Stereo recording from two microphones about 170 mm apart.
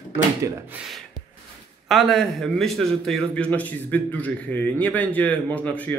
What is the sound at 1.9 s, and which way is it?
A man's voice, centre (ahead or behind).